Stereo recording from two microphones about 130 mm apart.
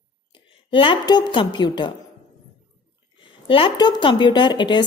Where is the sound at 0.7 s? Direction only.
40° left (ahead or behind).